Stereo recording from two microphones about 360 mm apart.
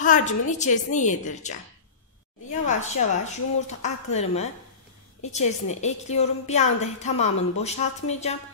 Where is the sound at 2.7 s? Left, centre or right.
Centre.